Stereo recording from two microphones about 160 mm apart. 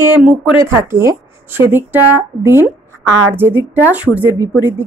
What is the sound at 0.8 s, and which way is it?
A woman's voice, 15° right (ahead or behind).